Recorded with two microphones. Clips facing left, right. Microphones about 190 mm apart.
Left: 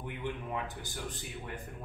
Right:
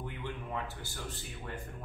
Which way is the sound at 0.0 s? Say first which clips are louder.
Left 2 dB; 15° left (ahead or behind).